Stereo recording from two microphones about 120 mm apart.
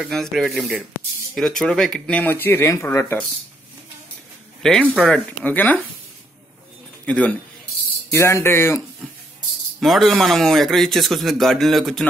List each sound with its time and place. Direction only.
0.0 s speech: centre (ahead or behind); by 3.2 s 20° left (ahead or behind)
4.6 s speech: 5° left (ahead or behind)
7.1 s speech: 10° left (ahead or behind)
8.1 s speech: 25° left (ahead or behind)
9.8 s speech: centre (ahead or behind)